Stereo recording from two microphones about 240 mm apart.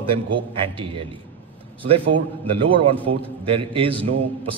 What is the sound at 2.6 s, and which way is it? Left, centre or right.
Speech, right.